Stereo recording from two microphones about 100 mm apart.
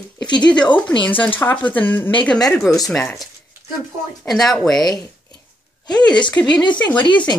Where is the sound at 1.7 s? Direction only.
20° left (ahead or behind).